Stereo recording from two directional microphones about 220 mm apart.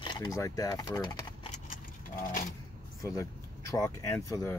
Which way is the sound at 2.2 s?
40° left (ahead or behind).